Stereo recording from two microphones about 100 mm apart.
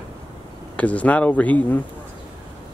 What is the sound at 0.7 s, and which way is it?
Speech, 15° left (ahead or behind).